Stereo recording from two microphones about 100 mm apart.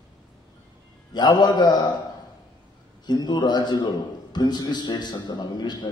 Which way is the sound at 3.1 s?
45° left (ahead or behind).